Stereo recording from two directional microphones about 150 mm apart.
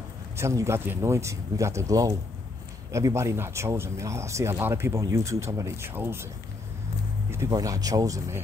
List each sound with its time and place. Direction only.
0.4 s speech: 20° right (ahead or behind)
7.2 s speech: 20° right (ahead or behind)